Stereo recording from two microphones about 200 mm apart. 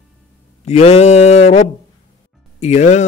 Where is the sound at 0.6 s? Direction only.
30° left (ahead or behind).